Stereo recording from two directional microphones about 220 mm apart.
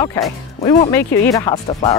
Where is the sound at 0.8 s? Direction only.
15° left (ahead or behind).